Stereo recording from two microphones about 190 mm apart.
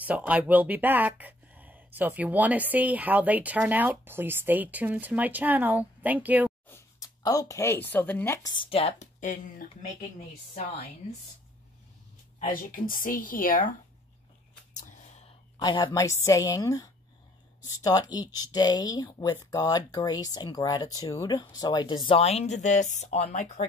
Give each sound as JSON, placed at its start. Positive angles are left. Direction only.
{"t": 0.0, "sound": "speech", "side_deg": -10}
{"t": 6.7, "sound": "speech", "side_deg": 20}
{"t": 12.4, "sound": "a woman's voice", "side_deg": 45}
{"t": 14.9, "sound": "whispering", "side_deg": 35}
{"t": 15.6, "sound": "a woman's voice", "side_deg": 20}